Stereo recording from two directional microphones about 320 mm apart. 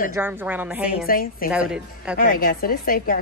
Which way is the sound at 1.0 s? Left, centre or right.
Left.